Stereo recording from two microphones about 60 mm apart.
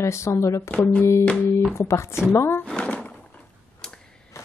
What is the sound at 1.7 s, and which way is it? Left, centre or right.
Speech, left.